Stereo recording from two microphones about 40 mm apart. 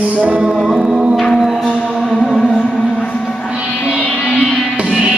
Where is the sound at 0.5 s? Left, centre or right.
Centre.